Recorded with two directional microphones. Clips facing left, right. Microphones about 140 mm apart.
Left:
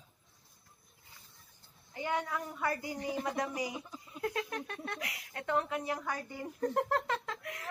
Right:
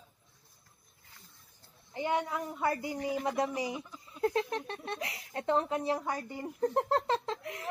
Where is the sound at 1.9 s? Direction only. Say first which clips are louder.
Right 3 dB; 25° right (ahead or behind).